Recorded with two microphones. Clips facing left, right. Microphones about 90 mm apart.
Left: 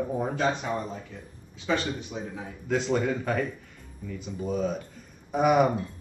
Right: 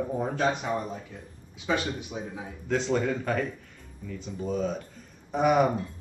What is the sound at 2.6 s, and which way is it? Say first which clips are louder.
Speech: even; 5° left (ahead or behind).